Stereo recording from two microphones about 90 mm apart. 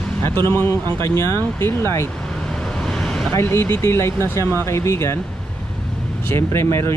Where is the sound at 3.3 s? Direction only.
30° left (ahead or behind).